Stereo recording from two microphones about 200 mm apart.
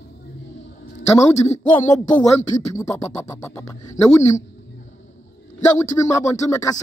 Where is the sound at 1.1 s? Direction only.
15° left (ahead or behind).